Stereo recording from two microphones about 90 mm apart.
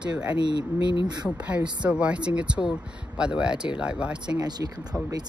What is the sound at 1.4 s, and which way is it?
Speech, 15° right (ahead or behind).